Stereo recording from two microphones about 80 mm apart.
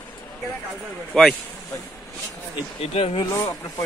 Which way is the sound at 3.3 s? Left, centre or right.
Left.